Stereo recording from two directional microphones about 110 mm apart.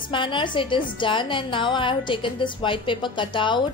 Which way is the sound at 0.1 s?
50° left (ahead or behind).